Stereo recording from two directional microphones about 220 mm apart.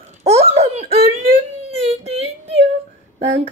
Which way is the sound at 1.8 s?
30° right (ahead or behind).